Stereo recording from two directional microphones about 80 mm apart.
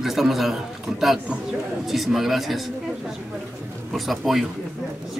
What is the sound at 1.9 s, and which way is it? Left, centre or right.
Speech, centre.